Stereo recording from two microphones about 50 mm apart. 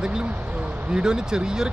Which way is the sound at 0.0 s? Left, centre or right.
Centre.